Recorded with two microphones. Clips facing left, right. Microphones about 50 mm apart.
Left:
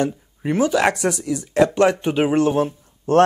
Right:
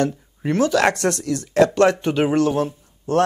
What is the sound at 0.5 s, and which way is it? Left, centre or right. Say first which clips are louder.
Speech: even; centre.